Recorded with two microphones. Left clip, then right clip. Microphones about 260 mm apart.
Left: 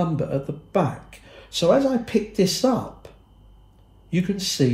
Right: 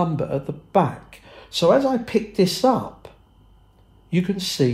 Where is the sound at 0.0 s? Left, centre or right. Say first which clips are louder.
Right 2 dB; right.